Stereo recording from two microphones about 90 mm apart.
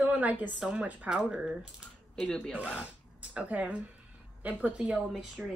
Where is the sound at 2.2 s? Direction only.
10° left (ahead or behind).